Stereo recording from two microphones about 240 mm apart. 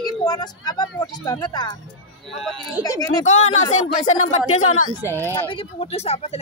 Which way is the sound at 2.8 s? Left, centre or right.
Centre.